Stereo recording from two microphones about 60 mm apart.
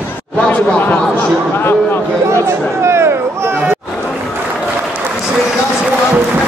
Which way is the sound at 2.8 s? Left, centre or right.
Right.